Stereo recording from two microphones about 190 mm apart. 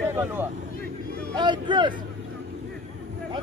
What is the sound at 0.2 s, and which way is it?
Speech, 10° right (ahead or behind).